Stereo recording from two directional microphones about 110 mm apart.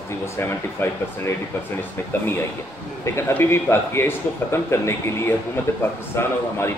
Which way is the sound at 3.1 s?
25° left (ahead or behind).